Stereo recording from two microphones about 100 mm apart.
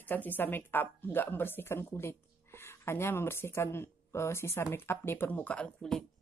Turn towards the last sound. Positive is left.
turn(degrees=5)  # may be behind; listen again after turning